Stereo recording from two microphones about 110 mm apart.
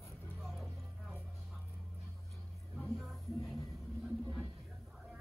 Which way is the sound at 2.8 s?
Centre (ahead or behind).